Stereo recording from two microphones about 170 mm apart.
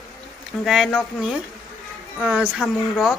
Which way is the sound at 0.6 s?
Centre (ahead or behind).